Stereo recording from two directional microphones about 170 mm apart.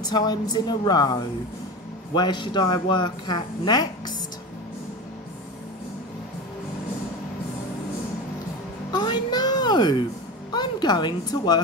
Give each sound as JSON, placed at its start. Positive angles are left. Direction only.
{"t": 0.0, "sound": "speech", "side_deg": 25}
{"t": 2.1, "sound": "speech", "side_deg": 25}
{"t": 8.9, "sound": "a sound", "side_deg": 25}
{"t": 10.5, "sound": "a woman's voice", "side_deg": 25}